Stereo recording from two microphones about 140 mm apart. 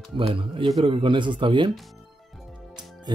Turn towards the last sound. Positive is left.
turn(degrees=-30)  # may be behind; listen again after turning